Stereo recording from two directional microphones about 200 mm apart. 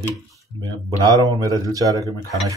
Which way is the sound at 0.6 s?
20° right (ahead or behind).